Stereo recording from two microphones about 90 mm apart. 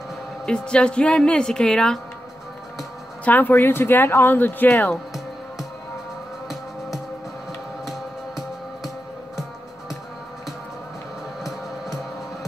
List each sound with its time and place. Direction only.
0.5 s a woman's voice: 10° left (ahead or behind)
3.3 s speech: 20° left (ahead or behind)
7.8 s music: 5° right (ahead or behind)